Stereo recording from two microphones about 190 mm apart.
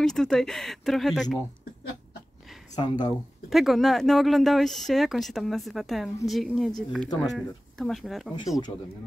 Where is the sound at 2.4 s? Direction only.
Centre (ahead or behind).